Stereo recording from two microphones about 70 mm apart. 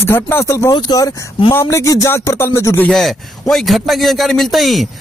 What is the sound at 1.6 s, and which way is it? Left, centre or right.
Speech, left.